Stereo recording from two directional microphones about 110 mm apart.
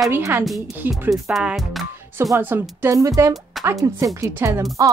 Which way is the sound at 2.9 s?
30° right (ahead or behind).